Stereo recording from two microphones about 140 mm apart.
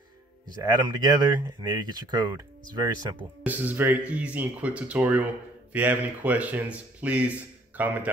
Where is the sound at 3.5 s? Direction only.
10° right (ahead or behind).